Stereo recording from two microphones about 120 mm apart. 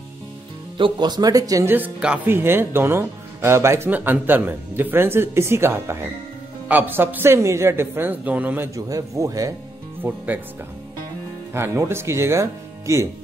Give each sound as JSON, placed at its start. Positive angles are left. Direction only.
{"t": 0.7, "sound": "speech", "side_deg": -40}
{"t": 1.7, "sound": "a woman's voice", "side_deg": -10}
{"t": 8.7, "sound": "speech", "side_deg": -30}
{"t": 10.0, "sound": "a woman's voice", "side_deg": -15}
{"t": 11.5, "sound": "speech", "side_deg": -20}